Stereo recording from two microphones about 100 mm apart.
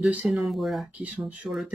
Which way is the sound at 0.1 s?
15° right (ahead or behind).